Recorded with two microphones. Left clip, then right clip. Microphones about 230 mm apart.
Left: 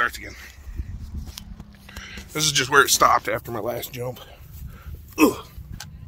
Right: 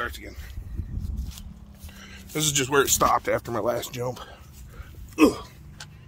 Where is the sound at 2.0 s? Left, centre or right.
Right.